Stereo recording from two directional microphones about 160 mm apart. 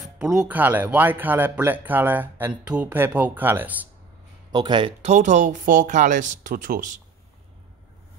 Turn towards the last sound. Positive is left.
turn(degrees=-60)  # may be behind; listen again after turning